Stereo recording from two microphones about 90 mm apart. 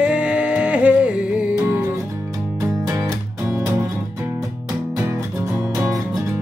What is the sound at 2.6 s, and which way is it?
Music, 30° right (ahead or behind).